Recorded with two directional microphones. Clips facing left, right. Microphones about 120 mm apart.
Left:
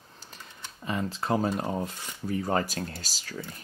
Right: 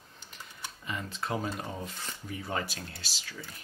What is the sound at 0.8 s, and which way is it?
Speech, 35° left (ahead or behind).